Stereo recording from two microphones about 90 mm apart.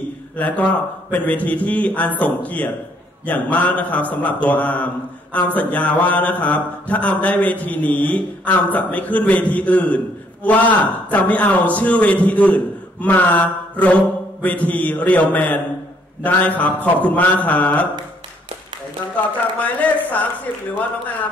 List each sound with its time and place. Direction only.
0.4 s a man's voice: 15° left (ahead or behind)
19.8 s a man's voice: 15° left (ahead or behind)